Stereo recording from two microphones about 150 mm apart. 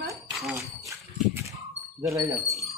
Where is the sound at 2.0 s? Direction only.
20° right (ahead or behind).